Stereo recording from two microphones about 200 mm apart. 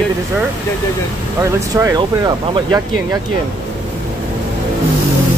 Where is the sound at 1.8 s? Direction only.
20° right (ahead or behind).